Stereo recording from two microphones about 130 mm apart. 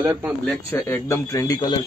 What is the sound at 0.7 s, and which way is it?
Speech, 20° left (ahead or behind).